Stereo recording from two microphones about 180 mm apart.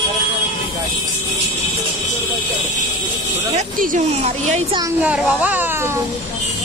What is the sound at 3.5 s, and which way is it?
A woman's voice, 45° right (ahead or behind).